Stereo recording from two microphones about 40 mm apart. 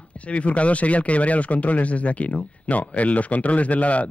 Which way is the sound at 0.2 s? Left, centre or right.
Left.